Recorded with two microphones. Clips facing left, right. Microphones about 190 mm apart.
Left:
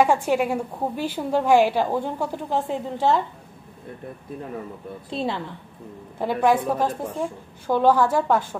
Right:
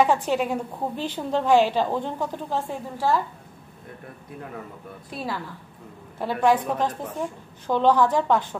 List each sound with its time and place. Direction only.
0.0 s a woman's voice: 10° left (ahead or behind)
5.1 s a woman's voice: 25° left (ahead or behind)
6.1 s a woman's voice: 15° left (ahead or behind)